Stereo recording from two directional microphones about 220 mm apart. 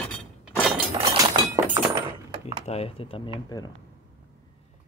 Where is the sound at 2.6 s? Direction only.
30° left (ahead or behind).